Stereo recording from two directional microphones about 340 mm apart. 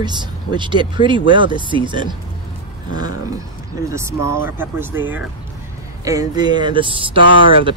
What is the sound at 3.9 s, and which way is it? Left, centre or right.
Speech, centre.